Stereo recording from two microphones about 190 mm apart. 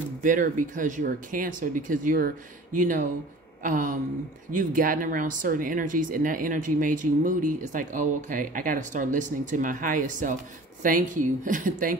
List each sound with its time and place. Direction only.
0.2 s speech: 45° right (ahead or behind)